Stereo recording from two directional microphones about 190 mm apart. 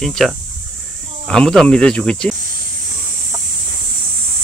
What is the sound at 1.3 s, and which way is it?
Speech, 5° left (ahead or behind).